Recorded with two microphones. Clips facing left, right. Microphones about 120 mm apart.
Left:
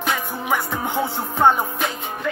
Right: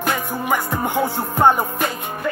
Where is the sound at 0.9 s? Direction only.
10° right (ahead or behind).